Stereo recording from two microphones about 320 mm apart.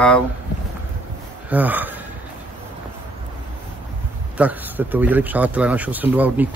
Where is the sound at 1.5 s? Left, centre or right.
Centre.